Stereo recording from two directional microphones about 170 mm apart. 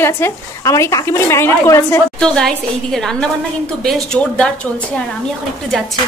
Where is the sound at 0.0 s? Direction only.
15° left (ahead or behind).